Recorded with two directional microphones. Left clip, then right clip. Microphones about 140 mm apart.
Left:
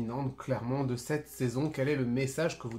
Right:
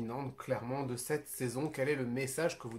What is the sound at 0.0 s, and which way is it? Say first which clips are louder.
Speech: left 4 dB; 30° right (ahead or behind).